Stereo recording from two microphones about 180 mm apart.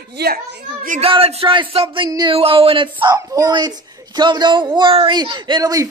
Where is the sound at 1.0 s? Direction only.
30° right (ahead or behind).